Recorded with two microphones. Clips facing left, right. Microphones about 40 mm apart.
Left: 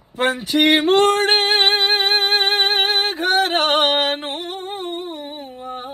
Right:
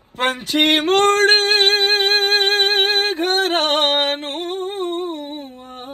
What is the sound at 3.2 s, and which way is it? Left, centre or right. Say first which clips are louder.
Singing: left 3 dB; left.